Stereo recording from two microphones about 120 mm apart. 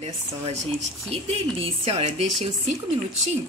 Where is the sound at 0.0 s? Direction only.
65° right (ahead or behind).